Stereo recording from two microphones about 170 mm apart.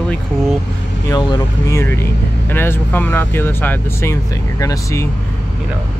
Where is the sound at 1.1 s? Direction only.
20° left (ahead or behind).